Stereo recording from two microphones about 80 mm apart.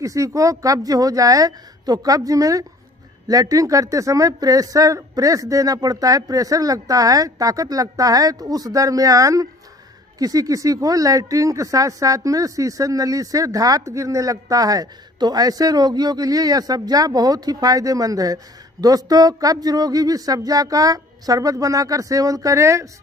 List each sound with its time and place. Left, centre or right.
0.0 s speech: right